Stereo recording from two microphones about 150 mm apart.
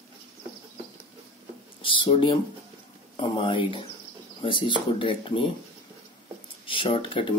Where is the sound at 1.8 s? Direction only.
35° left (ahead or behind).